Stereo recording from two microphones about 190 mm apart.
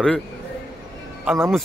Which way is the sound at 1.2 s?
15° right (ahead or behind).